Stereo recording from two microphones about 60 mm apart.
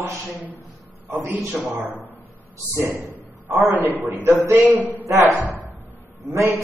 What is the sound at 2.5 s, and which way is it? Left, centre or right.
Speech, right.